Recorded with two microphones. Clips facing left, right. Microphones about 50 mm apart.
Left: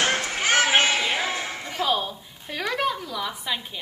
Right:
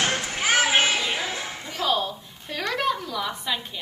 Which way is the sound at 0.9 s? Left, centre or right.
Left.